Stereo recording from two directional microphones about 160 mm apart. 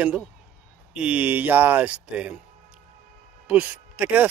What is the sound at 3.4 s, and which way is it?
Speech, 10° right (ahead or behind).